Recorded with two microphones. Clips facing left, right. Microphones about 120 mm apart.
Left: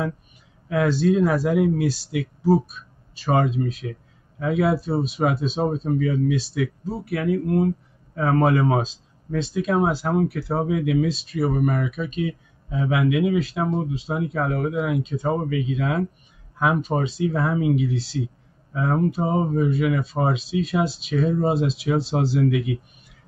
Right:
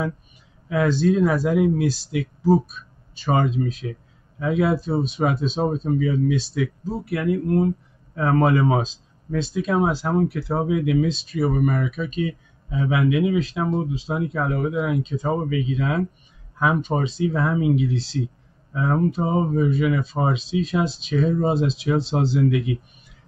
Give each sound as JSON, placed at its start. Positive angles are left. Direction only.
{"t": 0.7, "sound": "speech", "side_deg": 0}